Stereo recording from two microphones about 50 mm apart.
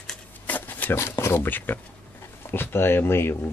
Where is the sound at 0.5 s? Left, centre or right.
Left.